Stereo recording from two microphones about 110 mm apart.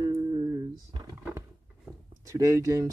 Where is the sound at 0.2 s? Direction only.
40° right (ahead or behind).